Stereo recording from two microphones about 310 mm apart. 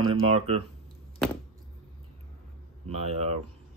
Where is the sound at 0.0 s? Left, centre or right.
Centre.